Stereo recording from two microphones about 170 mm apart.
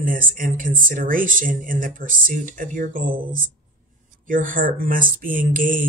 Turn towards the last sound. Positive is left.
turn(degrees=-55)  # may be behind; listen again after turning